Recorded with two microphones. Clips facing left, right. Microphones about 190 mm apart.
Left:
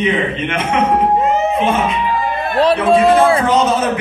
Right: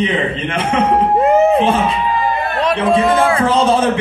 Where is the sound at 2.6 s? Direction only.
30° left (ahead or behind).